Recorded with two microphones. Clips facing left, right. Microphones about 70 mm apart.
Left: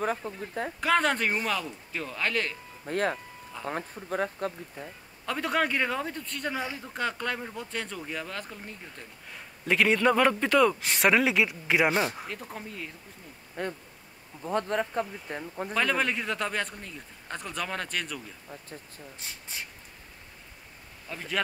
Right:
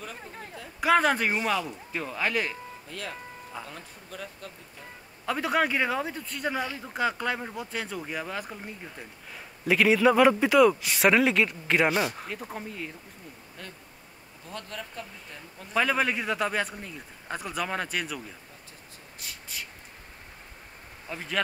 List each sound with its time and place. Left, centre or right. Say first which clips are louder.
0.0 s speech: left 10 dB; left
0.7 s speech: right 3 dB; centre
2.9 s speech: left 11 dB; left
5.2 s speech: right 2 dB; centre
13.6 s speech: left 13 dB; left
15.7 s speech: right 2 dB; centre
19.1 s speech: right 2 dB; left
21.1 s speech: right 2 dB; centre